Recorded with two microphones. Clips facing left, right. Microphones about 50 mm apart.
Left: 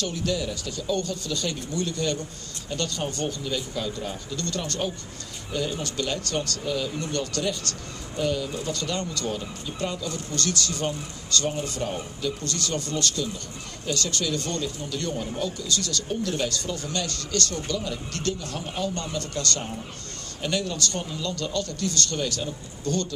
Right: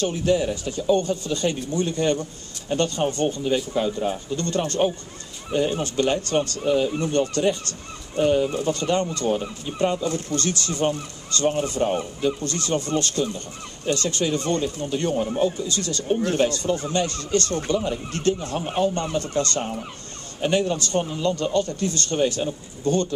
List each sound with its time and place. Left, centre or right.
0.0 s a man's voice: right